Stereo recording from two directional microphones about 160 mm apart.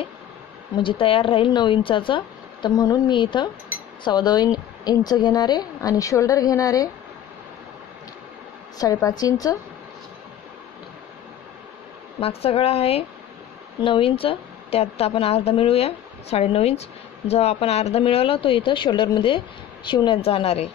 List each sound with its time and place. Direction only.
0.7 s speech: 35° left (ahead or behind)
8.7 s speech: 25° left (ahead or behind)
12.2 s speech: 40° left (ahead or behind)